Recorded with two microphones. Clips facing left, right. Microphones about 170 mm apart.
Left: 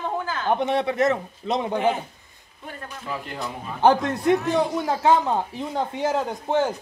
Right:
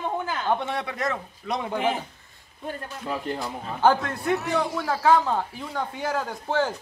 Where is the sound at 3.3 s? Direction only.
20° left (ahead or behind).